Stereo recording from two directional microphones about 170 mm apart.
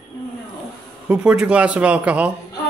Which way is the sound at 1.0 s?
5° right (ahead or behind).